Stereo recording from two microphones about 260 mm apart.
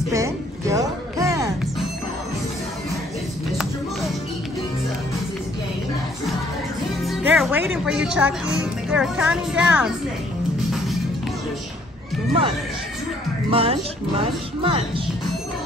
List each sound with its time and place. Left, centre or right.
0.1 s music: centre
7.0 s speech: centre
13.5 s speech: right